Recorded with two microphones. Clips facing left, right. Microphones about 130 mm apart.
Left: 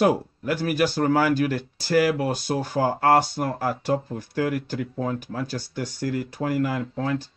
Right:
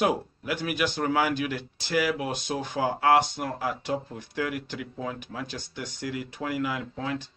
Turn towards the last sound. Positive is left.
turn(degrees=45)  # may be behind; listen again after turning